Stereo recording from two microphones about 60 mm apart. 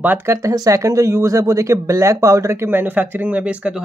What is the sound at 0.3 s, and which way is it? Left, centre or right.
Speech, right.